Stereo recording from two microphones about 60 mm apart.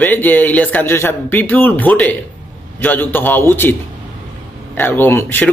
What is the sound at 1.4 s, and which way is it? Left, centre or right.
A man's voice, left.